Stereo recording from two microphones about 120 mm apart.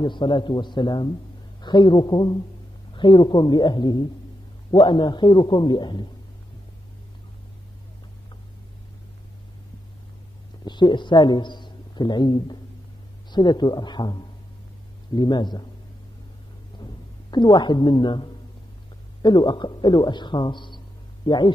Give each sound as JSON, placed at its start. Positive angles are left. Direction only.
{"t": 0.0, "sound": "a man's voice", "side_deg": 40}
{"t": 10.6, "sound": "a man's voice", "side_deg": 40}
{"t": 16.8, "sound": "a woman's voice", "side_deg": 35}